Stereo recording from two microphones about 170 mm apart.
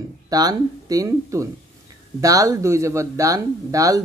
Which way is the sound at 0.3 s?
20° right (ahead or behind).